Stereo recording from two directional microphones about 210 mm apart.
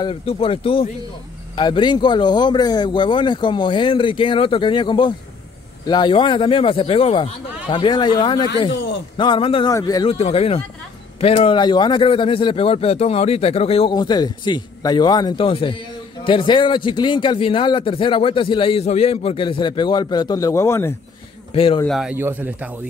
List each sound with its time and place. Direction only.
0.0 s a man's voice: 25° left (ahead or behind)
10.1 s a man's voice: 30° left (ahead or behind); by 20.9 s 15° left (ahead or behind)
21.5 s a man's voice: 25° left (ahead or behind)
21.8 s a man's voice: centre (ahead or behind)